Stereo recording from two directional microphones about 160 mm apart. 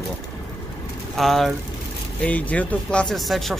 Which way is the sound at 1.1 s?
Centre (ahead or behind).